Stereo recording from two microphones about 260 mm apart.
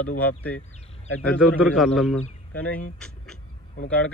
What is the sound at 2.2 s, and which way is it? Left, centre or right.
Speech, left.